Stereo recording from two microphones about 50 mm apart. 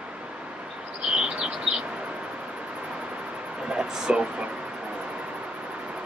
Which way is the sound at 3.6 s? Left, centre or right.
Centre.